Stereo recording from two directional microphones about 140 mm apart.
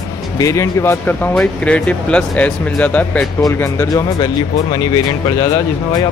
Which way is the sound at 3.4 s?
25° left (ahead or behind).